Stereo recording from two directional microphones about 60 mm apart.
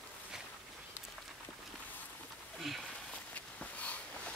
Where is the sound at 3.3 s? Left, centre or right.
Left.